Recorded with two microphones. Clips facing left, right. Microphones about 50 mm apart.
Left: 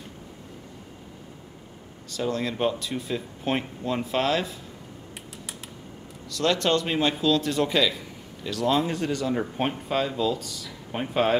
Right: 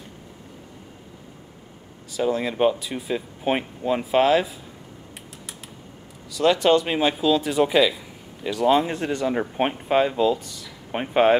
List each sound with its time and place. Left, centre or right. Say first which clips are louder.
2.0 s speech: right 4 dB; centre
6.3 s speech: right 5 dB; centre